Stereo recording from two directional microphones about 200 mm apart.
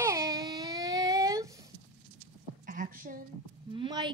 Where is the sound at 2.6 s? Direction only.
40° right (ahead or behind).